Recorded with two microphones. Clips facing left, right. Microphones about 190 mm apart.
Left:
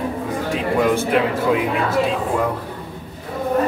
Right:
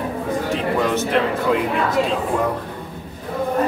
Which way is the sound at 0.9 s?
10° left (ahead or behind).